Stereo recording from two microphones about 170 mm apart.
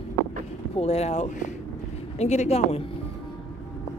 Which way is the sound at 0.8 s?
40° left (ahead or behind).